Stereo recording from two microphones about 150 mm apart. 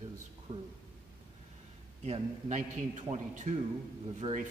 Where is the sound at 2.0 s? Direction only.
50° right (ahead or behind).